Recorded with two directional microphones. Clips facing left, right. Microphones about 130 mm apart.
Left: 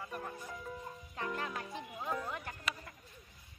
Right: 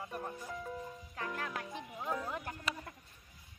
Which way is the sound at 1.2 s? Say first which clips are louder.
Left 1 dB; 10° left (ahead or behind).